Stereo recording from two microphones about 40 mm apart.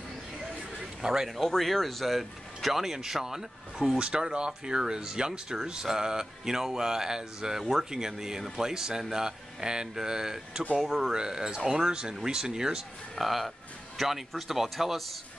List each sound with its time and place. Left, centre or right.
1.0 s speech: centre
1.5 s speech: centre
4.0 s speech: right
13.1 s speech: centre